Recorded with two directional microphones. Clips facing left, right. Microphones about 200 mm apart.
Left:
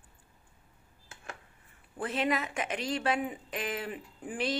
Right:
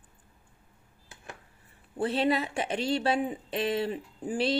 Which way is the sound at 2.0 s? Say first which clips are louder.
Right 4 dB; 30° right (ahead or behind).